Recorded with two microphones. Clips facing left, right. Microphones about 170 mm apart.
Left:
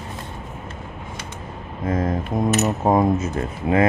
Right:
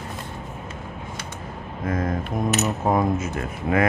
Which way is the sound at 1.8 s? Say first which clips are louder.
Left 3 dB; 30° left (ahead or behind).